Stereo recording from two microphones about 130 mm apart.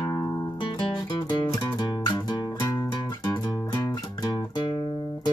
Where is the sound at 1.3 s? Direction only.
40° left (ahead or behind).